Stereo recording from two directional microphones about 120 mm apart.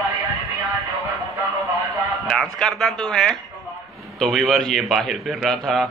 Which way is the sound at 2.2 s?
5° left (ahead or behind).